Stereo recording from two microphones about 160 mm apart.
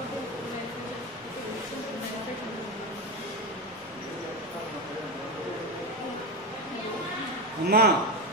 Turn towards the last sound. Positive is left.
turn(degrees=-75)  # may be behind; listen again after turning